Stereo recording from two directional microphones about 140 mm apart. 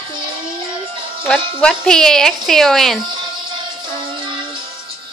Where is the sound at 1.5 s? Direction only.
5° left (ahead or behind).